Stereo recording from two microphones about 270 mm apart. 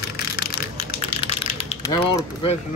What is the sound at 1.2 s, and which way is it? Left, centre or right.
Mechanisms, centre.